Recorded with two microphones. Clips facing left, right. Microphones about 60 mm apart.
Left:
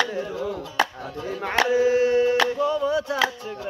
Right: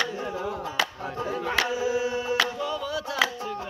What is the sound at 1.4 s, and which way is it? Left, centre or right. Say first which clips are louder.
Carnatic music: left 8 dB; left.